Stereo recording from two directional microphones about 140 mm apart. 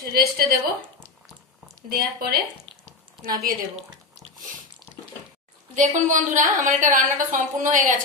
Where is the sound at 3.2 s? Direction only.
90° right.